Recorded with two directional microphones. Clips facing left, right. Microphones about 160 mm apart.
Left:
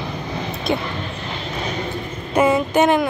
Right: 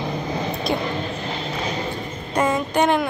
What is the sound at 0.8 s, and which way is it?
Vehicle, 40° right (ahead or behind).